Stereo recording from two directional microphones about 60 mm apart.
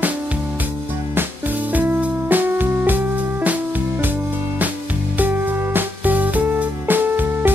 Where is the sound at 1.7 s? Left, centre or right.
Right.